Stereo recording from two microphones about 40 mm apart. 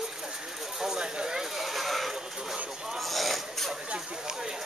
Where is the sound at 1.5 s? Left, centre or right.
Centre.